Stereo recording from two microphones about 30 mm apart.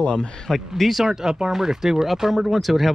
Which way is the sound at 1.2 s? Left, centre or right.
Right.